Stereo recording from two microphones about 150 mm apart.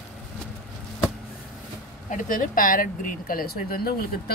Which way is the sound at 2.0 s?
65° left (ahead or behind).